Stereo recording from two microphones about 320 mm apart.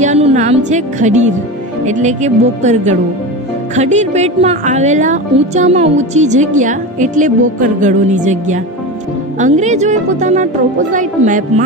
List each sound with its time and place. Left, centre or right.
0.0 s music: right
0.7 s speech: right